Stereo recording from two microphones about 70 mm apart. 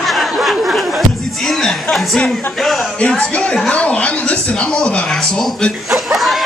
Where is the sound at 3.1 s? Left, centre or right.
Centre.